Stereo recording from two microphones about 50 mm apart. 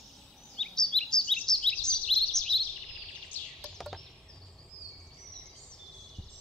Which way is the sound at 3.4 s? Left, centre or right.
Left.